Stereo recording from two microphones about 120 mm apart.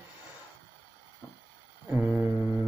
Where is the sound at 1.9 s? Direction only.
10° right (ahead or behind).